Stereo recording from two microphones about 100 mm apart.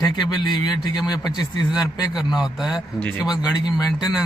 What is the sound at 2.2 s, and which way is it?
Speech, 5° right (ahead or behind).